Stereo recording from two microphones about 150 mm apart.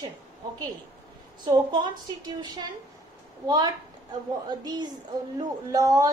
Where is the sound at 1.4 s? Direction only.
30° right (ahead or behind).